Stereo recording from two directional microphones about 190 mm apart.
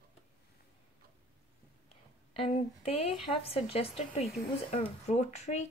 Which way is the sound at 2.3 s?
30° left (ahead or behind).